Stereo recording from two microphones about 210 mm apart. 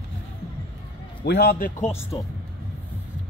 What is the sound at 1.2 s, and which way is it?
Speech, 50° left (ahead or behind).